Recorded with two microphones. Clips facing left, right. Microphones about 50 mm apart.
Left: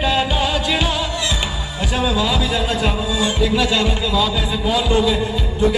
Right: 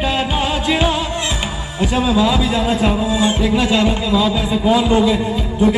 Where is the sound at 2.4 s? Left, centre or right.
Right.